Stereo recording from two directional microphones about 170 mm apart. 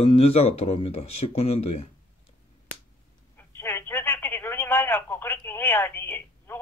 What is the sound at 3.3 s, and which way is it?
Telephone, 15° left (ahead or behind).